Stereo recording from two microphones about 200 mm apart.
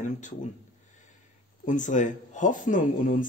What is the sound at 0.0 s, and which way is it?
Speech, 40° left (ahead or behind).